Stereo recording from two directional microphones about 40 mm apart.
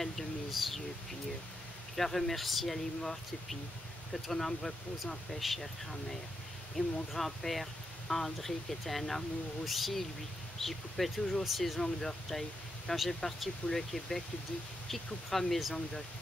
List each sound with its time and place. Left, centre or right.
0.0 s speech: centre
2.0 s speech: centre
6.8 s speech: centre
7.2 s speech: centre
11.8 s speech: centre